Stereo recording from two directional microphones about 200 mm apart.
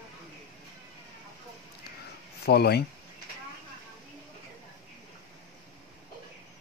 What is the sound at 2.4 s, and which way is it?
Speech, 55° left (ahead or behind).